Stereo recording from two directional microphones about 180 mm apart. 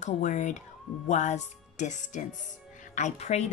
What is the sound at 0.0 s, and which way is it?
Speech, 40° left (ahead or behind).